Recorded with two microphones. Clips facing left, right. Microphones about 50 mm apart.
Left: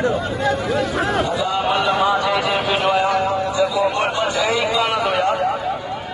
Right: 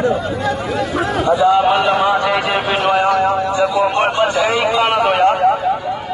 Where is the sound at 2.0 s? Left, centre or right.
Right.